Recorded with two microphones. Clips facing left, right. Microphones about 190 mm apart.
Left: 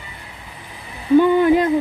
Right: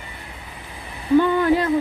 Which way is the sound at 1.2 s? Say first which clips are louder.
Left 4 dB; 20° left (ahead or behind).